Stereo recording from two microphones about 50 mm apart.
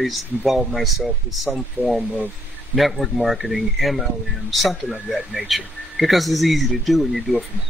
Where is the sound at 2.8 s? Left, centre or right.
Centre.